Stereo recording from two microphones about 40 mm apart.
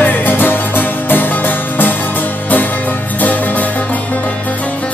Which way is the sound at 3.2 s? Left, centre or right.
Left.